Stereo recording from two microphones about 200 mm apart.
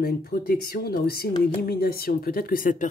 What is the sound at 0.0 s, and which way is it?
Speech, 50° left (ahead or behind).